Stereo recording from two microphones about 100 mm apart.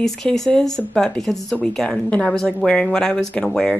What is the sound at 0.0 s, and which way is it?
Speech, 5° left (ahead or behind).